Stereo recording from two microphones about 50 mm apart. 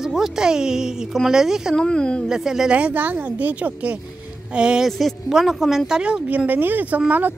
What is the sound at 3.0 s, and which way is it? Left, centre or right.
Speech, right.